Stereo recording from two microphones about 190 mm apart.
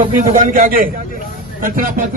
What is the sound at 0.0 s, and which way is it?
A man's voice, 45° right (ahead or behind).